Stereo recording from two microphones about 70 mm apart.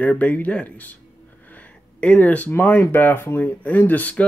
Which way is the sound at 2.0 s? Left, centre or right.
Left.